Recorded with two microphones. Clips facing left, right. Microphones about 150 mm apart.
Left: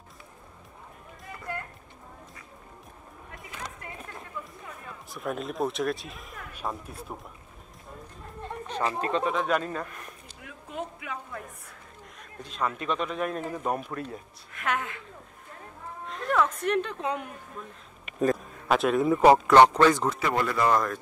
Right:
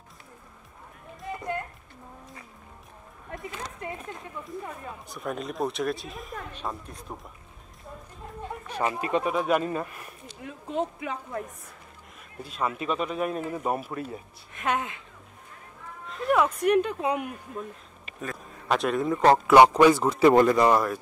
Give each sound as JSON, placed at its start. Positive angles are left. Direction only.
{"t": 1.2, "sound": "music", "side_deg": -20}
{"t": 3.4, "sound": "speech", "side_deg": -25}
{"t": 5.1, "sound": "speech", "side_deg": 0}
{"t": 8.4, "sound": "speech", "side_deg": -10}
{"t": 10.4, "sound": "speech", "side_deg": -30}
{"t": 12.2, "sound": "speech", "side_deg": -5}
{"t": 14.5, "sound": "speech", "side_deg": -20}
{"t": 16.1, "sound": "speech", "side_deg": -10}
{"t": 18.7, "sound": "speech", "side_deg": 0}
{"t": 19.4, "sound": "speech", "side_deg": -10}
{"t": 20.2, "sound": "speech", "side_deg": -25}